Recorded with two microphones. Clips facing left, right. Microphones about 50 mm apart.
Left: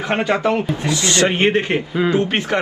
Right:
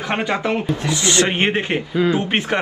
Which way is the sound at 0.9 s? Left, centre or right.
Right.